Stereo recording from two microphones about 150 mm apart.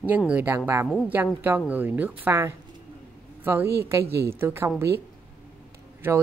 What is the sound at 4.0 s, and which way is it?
Speech, 90° right.